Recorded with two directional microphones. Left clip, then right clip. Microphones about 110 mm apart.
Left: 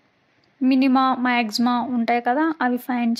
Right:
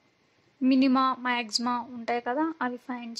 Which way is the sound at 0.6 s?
30° left (ahead or behind).